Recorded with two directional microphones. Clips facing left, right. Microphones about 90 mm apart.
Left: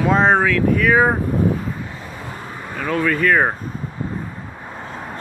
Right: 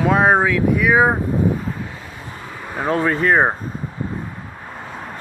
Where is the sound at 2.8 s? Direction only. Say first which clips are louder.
Right 1 dB; 30° right (ahead or behind).